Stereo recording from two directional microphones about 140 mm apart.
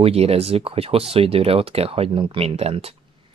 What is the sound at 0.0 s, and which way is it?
Speech, 45° right (ahead or behind).